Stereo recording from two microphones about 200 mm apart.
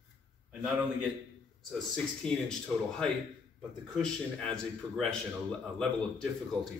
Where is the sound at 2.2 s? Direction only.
5° left (ahead or behind).